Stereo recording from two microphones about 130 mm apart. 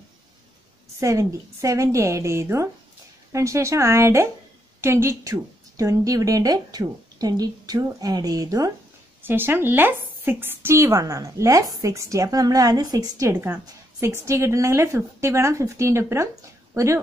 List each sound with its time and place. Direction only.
0.9 s speech: 25° right (ahead or behind)
9.2 s speech: 15° right (ahead or behind)